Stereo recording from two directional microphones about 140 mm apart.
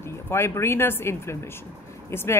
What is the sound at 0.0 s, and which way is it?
Speech, 20° left (ahead or behind).